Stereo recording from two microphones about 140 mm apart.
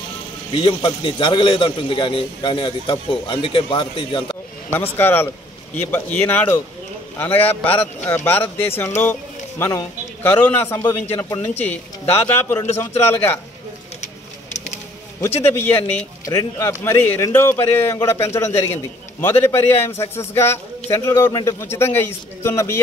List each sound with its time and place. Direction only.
0.5 s a man's voice: 40° left (ahead or behind)
4.9 s speech: 15° left (ahead or behind)
14.0 s a sound: 55° left (ahead or behind)
15.1 s speech: 15° left (ahead or behind)
16.3 s a man's voice: 25° left (ahead or behind)